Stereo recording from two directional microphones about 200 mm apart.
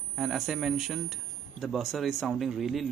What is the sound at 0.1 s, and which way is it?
Speech, 5° right (ahead or behind).